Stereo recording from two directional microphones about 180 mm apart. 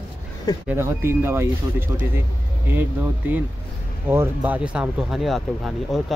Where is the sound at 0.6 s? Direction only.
15° right (ahead or behind).